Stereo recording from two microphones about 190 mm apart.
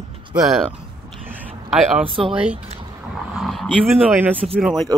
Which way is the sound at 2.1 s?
30° right (ahead or behind).